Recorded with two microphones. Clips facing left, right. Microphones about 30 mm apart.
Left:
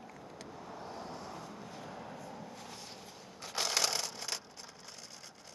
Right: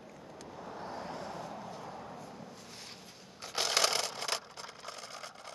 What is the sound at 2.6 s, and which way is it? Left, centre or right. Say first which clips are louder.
Boat: left 1 dB; centre.